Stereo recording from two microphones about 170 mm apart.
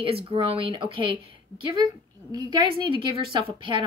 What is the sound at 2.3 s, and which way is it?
A woman's voice, 25° right (ahead or behind).